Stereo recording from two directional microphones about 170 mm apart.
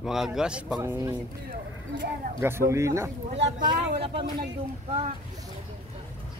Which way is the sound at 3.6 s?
30° right (ahead or behind).